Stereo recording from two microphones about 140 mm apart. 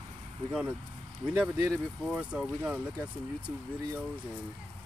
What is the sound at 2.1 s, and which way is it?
Speech, 10° right (ahead or behind).